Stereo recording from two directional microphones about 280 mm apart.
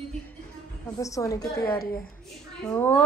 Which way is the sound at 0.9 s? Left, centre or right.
Centre.